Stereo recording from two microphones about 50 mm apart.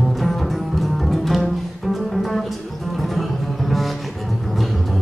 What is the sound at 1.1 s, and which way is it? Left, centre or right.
Music, centre.